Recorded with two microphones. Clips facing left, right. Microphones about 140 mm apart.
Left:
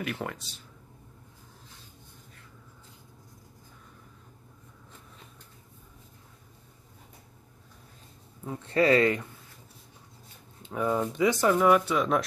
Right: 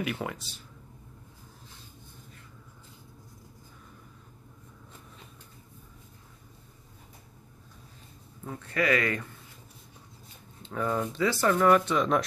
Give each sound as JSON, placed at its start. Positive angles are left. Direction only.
{"t": 0.0, "sound": "speech", "side_deg": -5}
{"t": 8.5, "sound": "speech", "side_deg": 25}
{"t": 10.6, "sound": "speech", "side_deg": 10}